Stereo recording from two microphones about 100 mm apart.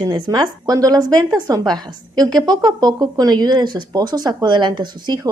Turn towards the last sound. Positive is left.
turn(degrees=-45)  # may be behind; listen again after turning